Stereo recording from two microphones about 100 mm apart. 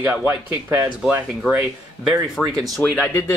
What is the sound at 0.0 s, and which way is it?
Speech, 10° right (ahead or behind).